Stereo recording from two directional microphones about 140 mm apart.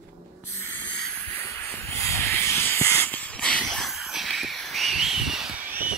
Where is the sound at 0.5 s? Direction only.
15° left (ahead or behind); by 6.0 s 10° right (ahead or behind).